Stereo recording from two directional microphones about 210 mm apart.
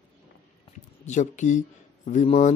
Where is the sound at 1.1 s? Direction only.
35° left (ahead or behind).